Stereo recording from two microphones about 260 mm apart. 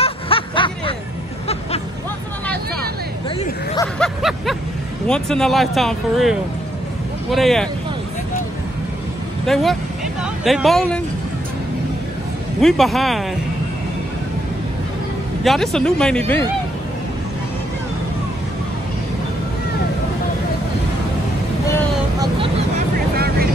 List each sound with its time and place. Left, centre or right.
0.0 s snicker: left
3.3 s a sound: centre
4.0 s vehicle: centre
5.0 s speech: centre
9.5 s speech: centre
12.5 s speech: centre
15.4 s speech: centre
23.1 s vehicle: right